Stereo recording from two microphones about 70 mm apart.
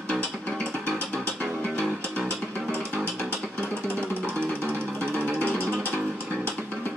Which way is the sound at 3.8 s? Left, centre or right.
Right.